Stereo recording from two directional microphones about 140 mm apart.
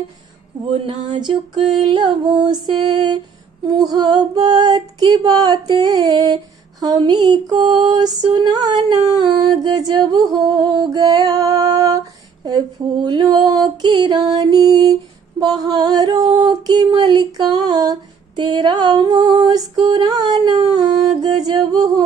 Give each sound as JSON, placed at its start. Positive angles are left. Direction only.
{"t": 0.7, "sound": "music", "side_deg": -40}
{"t": 3.7, "sound": "female singing", "side_deg": -30}